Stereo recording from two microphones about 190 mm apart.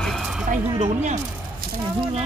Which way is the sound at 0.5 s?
35° right (ahead or behind).